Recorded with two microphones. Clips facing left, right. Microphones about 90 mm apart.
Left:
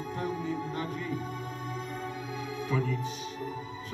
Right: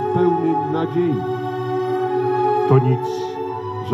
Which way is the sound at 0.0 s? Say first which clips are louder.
Right 17 dB; 65° right (ahead or behind).